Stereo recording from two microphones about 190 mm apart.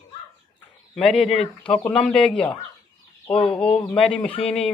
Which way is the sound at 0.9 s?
5° left (ahead or behind).